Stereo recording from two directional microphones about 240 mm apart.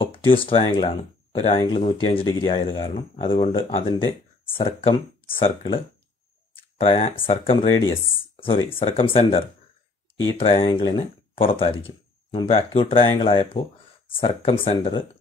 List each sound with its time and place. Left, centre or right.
0.0 s speech: left
10.4 s speech: left